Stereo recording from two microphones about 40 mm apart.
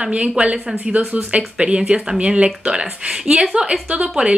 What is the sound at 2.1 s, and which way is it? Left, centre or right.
A woman's voice, right.